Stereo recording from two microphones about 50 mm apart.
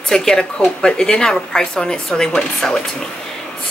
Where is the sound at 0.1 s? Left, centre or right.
Centre.